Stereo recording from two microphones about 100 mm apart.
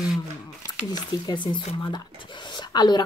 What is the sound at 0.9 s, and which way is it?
Speech, 50° left (ahead or behind).